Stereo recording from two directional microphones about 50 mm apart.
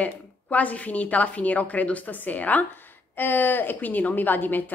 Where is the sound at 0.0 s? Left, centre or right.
Left.